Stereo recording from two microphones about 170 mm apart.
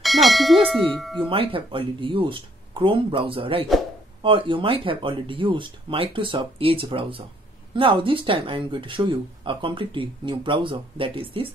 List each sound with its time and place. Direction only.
0.0 s bell: centre (ahead or behind)
0.7 s speech: centre (ahead or behind)
1.2 s speech: 30° right (ahead or behind)